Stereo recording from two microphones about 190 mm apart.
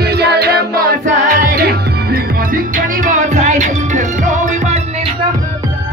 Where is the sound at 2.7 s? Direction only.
40° right (ahead or behind).